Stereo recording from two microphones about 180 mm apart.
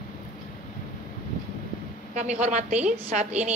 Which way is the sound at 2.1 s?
40° right (ahead or behind).